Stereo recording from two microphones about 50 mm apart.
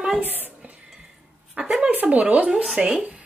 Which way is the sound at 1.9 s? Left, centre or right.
Right.